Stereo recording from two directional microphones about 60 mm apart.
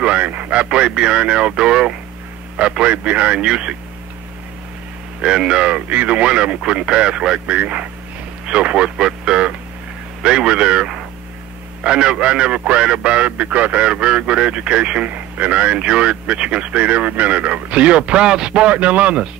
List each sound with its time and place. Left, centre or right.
0.0 s a man's voice: right
5.2 s a man's voice: centre